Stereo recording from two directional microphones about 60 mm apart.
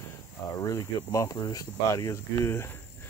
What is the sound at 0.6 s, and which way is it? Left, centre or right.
Speech, left.